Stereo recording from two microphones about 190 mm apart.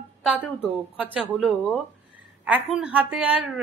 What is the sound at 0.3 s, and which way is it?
Speech, 5° right (ahead or behind).